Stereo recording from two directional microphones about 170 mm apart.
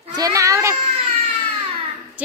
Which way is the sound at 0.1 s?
20° right (ahead or behind).